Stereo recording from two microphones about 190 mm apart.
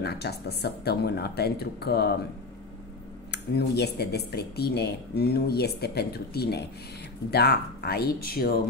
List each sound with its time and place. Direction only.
0.0 s speech: 60° left (ahead or behind)
3.3 s speech: 60° left (ahead or behind)